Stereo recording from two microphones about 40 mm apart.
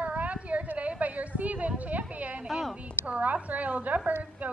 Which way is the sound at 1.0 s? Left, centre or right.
Right.